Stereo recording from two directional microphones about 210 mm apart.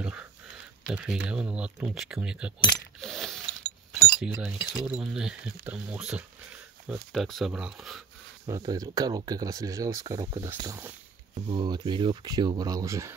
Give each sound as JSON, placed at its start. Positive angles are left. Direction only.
{"t": 0.0, "sound": "a sound", "side_deg": -5}
{"t": 0.8, "sound": "speech", "side_deg": -5}
{"t": 3.0, "sound": "mechanisms", "side_deg": 0}
{"t": 4.1, "sound": "speech", "side_deg": -5}
{"t": 8.5, "sound": "speech", "side_deg": -20}